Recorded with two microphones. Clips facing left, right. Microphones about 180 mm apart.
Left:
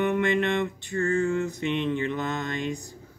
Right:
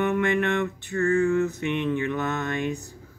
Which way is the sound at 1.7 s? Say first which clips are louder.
Right 1 dB; 55° right (ahead or behind).